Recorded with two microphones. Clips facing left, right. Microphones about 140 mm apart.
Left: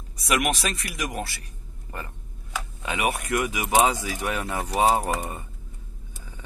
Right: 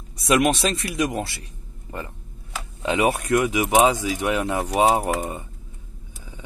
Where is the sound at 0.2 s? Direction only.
30° right (ahead or behind).